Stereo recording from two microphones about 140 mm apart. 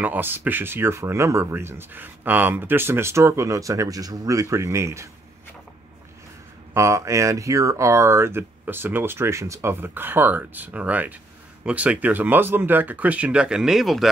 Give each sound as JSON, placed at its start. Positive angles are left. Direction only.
{"t": 0.0, "sound": "speech", "side_deg": -15}
{"t": 6.7, "sound": "speech", "side_deg": -20}